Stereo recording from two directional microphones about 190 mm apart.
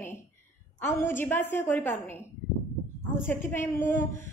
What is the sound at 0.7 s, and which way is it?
A woman's voice, 10° left (ahead or behind).